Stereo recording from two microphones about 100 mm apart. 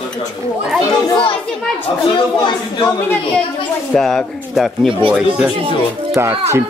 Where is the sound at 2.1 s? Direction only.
50° left (ahead or behind).